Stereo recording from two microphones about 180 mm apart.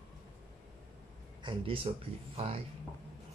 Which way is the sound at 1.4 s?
30° right (ahead or behind).